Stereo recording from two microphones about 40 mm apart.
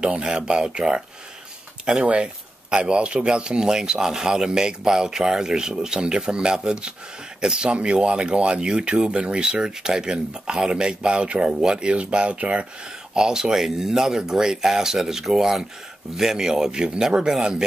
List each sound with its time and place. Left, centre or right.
0.0 s speech: right
2.0 s a man's voice: right
13.1 s a man's voice: centre